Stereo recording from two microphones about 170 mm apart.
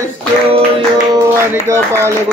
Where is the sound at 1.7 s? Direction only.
15° right (ahead or behind).